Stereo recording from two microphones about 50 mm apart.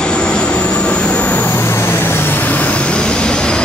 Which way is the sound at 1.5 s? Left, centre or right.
Left.